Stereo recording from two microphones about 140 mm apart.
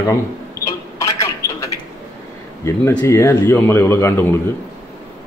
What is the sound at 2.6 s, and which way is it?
A man's voice, 20° left (ahead or behind).